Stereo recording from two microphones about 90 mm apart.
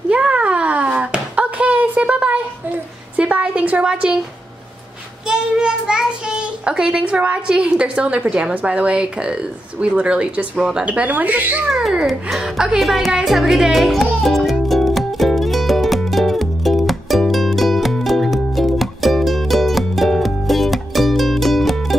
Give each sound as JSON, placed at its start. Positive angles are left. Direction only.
{"t": 0.1, "sound": "a sound", "side_deg": -15}
{"t": 5.3, "sound": "a child's voice", "side_deg": -10}
{"t": 11.7, "sound": "music", "side_deg": -5}